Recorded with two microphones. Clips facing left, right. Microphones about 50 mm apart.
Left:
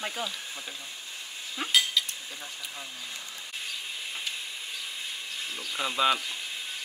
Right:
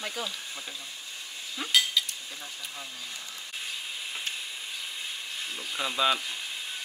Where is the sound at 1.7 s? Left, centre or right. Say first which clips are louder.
Even; centre.